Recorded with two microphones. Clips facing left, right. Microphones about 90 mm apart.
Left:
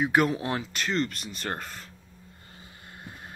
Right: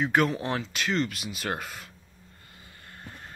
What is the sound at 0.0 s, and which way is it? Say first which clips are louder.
Speech: left 1 dB; 5° left (ahead or behind).